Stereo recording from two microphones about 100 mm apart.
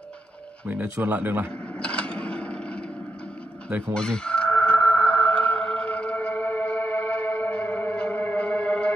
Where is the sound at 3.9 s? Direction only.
10° left (ahead or behind).